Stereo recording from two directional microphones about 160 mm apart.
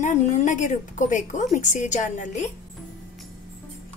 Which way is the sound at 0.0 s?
50° left (ahead or behind).